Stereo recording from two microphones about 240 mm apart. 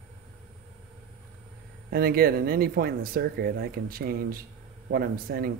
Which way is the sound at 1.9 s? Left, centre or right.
Right.